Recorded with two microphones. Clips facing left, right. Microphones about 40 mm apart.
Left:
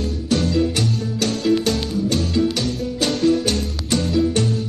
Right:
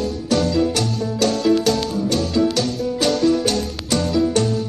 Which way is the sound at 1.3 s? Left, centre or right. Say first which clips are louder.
Even; centre.